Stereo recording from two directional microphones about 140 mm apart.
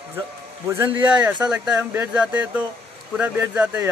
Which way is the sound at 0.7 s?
15° right (ahead or behind).